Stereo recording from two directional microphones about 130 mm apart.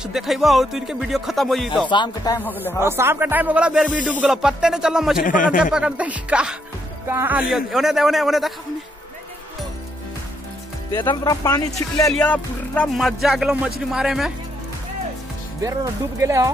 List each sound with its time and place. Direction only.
0.0 s music: centre (ahead or behind)
1.9 s speech: 35° left (ahead or behind)
2.8 s speech: 20° right (ahead or behind)
5.2 s speech: 90° left
5.6 s speech: 5° right (ahead or behind)
7.5 s music: 5° right (ahead or behind)
10.9 s speech: 35° left (ahead or behind)
12.3 s speech: 10° left (ahead or behind)
12.9 s music: centre (ahead or behind)
15.6 s speech: 25° right (ahead or behind)